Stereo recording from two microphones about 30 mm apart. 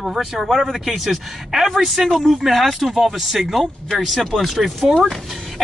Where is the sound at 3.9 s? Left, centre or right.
Centre.